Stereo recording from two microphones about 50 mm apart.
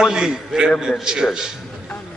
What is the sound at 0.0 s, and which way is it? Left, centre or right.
Speech, centre.